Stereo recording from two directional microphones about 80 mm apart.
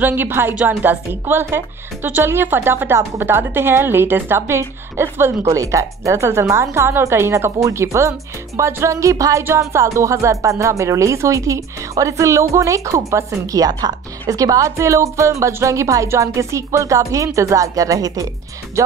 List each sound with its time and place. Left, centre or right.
0.0 s a woman's voice: right